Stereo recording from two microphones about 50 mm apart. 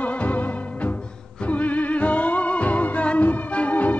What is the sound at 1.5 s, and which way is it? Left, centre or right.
Music, left.